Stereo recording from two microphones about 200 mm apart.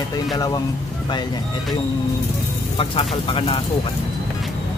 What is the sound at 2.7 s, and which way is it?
Speech, 30° left (ahead or behind).